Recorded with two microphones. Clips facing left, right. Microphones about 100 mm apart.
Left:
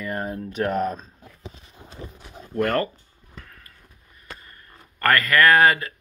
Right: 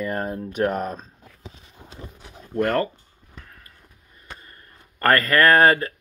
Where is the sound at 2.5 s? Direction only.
20° right (ahead or behind).